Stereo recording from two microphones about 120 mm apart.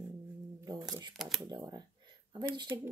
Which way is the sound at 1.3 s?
35° right (ahead or behind).